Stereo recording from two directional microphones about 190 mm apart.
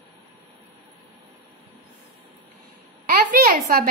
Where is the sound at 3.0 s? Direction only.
50° right (ahead or behind).